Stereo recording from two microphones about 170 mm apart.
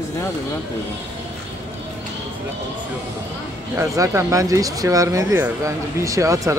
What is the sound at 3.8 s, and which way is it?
Speech, 15° right (ahead or behind).